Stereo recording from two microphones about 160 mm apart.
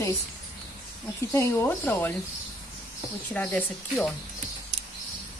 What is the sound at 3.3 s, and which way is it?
Speech, 10° left (ahead or behind).